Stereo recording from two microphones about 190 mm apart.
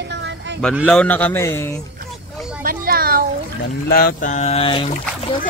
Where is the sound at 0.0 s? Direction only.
70° right (ahead or behind).